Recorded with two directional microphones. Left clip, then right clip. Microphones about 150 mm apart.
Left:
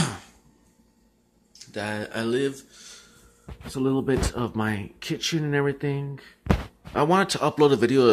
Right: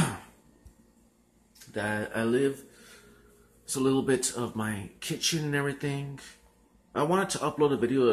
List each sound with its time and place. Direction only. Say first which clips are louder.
1.7 s a sound: left 1 dB; 25° left (ahead or behind)
3.7 s speech: left 2 dB; 30° left (ahead or behind)
6.9 s a man's voice: left 6 dB; 45° left (ahead or behind)